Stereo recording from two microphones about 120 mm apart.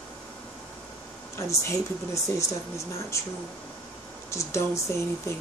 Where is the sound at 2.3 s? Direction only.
25° left (ahead or behind).